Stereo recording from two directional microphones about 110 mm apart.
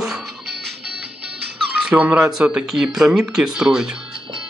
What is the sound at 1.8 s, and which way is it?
Speech, 10° right (ahead or behind).